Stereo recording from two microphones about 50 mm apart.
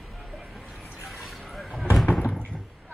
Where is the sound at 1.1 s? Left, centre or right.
Centre.